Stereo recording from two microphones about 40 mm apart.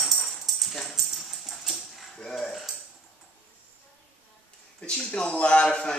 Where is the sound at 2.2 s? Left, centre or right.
Centre.